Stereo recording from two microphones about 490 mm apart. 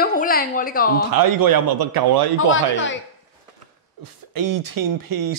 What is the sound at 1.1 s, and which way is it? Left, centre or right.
A man's voice, right.